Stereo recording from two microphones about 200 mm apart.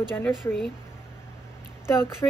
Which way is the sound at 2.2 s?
15° left (ahead or behind).